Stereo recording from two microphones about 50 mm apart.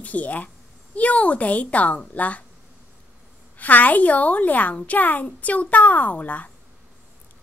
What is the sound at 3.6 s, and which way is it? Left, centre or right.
Speech, left.